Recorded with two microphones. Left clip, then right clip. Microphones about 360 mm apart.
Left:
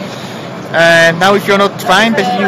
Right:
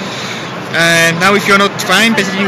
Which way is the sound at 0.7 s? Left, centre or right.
Left.